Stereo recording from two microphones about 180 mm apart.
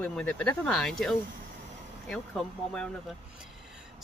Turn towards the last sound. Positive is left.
turn(degrees=5)  # may be behind; listen again after turning